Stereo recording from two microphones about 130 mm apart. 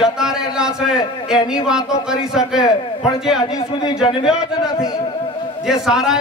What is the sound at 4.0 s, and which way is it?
A man's voice, 5° right (ahead or behind).